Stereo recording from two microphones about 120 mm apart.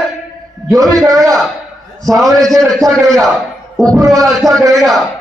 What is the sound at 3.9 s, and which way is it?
Speech, 30° right (ahead or behind).